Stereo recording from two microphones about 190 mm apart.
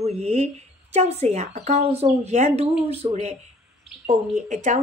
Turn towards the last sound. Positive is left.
turn(degrees=-40)  # may be behind; listen again after turning